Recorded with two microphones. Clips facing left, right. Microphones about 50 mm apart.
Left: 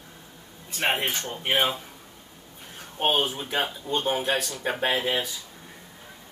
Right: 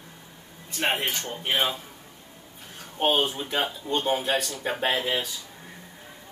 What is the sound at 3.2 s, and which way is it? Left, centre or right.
Speech, centre.